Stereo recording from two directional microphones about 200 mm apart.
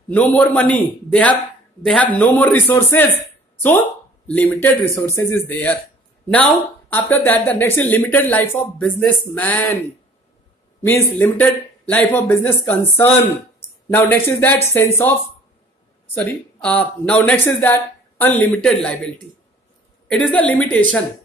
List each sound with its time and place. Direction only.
0.1 s speech: 5° left (ahead or behind)
4.3 s speech: 10° left (ahead or behind)
10.8 s speech: 10° left (ahead or behind)
16.6 s speech: 5° left (ahead or behind)
20.1 s speech: 5° left (ahead or behind)